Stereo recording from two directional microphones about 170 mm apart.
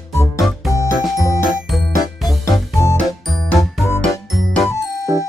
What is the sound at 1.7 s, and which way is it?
Music, centre (ahead or behind).